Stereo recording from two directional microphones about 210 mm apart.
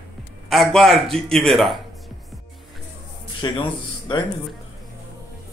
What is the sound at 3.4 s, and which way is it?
Speech, 20° left (ahead or behind).